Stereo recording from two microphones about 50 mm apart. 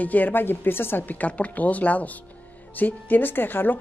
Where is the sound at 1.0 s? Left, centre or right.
Left.